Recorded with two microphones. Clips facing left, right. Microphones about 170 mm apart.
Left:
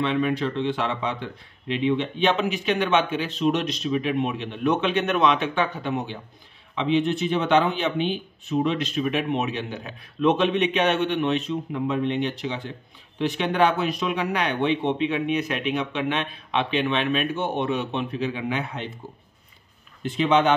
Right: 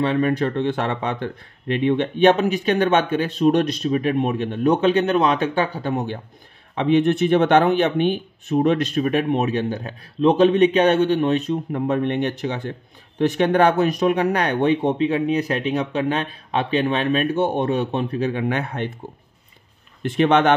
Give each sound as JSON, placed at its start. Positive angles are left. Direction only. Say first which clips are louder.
{"t": 0.0, "sound": "speech", "louder": "right 4 dB", "side_deg": -40}
{"t": 6.7, "sound": "speech", "louder": "right 5 dB", "side_deg": -50}
{"t": 20.0, "sound": "speech", "louder": "right 4 dB", "side_deg": -60}